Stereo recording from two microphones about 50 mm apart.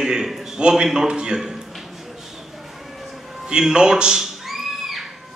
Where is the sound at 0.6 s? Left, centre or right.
Centre.